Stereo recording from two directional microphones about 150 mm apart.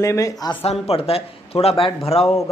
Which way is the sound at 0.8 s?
40° left (ahead or behind).